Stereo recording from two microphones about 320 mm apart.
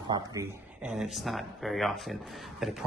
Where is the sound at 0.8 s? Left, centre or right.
Centre.